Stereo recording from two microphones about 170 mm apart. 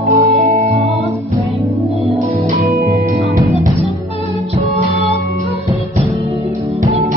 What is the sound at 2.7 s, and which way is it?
Music, 60° right (ahead or behind).